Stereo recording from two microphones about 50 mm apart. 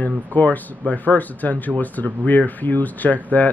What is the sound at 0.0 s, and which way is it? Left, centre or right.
Speech, left.